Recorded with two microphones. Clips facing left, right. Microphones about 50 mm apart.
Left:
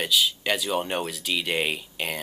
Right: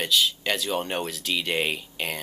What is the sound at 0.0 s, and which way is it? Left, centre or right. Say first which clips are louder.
Speech: even; centre.